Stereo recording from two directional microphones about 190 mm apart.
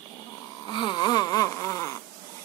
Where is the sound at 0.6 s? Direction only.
25° left (ahead or behind).